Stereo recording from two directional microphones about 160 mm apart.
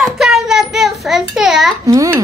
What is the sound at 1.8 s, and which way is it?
Speech, 20° right (ahead or behind).